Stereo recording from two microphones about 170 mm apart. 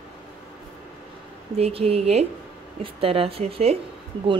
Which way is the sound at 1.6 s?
35° right (ahead or behind).